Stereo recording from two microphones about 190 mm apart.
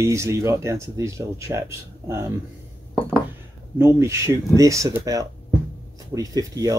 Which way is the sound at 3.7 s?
15° right (ahead or behind).